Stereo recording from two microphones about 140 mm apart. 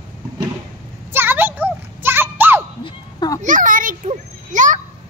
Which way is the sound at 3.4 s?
70° right (ahead or behind).